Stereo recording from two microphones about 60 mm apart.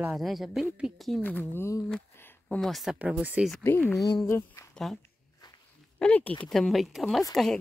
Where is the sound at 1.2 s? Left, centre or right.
Left.